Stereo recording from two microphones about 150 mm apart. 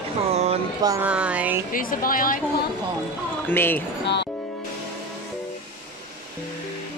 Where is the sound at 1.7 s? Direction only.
70° left (ahead or behind).